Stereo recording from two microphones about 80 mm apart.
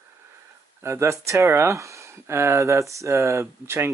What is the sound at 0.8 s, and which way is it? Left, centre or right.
Speech, right.